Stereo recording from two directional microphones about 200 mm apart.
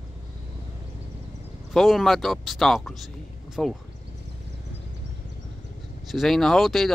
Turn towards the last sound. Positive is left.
turn(degrees=0)  # may be behind; listen again after turning